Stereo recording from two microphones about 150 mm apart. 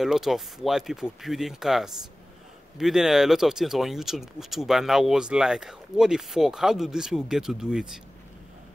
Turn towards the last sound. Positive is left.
turn(degrees=-5)  # may be behind; listen again after turning